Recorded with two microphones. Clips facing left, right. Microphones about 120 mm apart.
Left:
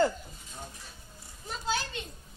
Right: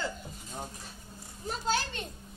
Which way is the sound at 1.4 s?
45° right (ahead or behind).